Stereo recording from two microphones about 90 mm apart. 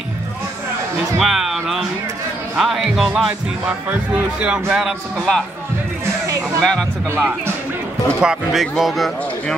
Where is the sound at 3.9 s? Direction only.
15° right (ahead or behind).